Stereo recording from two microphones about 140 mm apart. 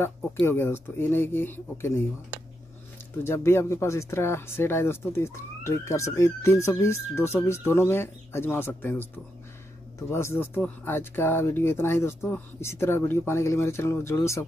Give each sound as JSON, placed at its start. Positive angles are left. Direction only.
{"t": 0.5, "sound": "speech", "side_deg": 15}
{"t": 3.3, "sound": "speech", "side_deg": 20}